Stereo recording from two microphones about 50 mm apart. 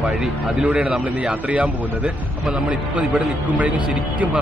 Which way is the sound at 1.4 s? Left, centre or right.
Right.